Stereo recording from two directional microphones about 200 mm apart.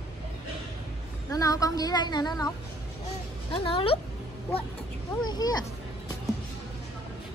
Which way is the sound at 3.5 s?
25° left (ahead or behind).